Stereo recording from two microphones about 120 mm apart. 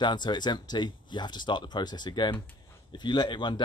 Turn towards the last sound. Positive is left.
turn(degrees=40)  # may be behind; listen again after turning